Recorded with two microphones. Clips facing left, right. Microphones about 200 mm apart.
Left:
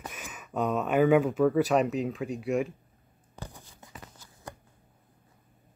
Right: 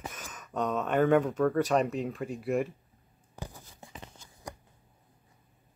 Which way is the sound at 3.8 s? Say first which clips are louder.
Right 3 dB; 25° right (ahead or behind).